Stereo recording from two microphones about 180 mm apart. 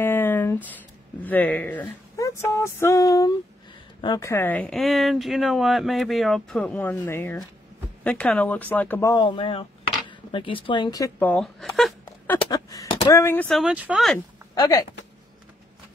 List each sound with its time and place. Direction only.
0.0 s a sound: 10° left (ahead or behind)
1.2 s speech: 10° left (ahead or behind)
9.1 s speech: 25° left (ahead or behind)
11.1 s speech: 5° left (ahead or behind)
12.4 s a sound: 20° left (ahead or behind)
13.5 s speech: centre (ahead or behind)
14.5 s speech: 20° left (ahead or behind)